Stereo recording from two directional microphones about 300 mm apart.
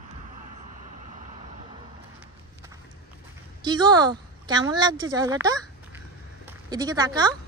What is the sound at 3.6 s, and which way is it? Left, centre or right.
A woman's voice, centre.